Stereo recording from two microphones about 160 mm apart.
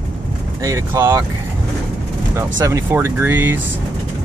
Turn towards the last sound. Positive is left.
turn(degrees=-15)  # may be behind; listen again after turning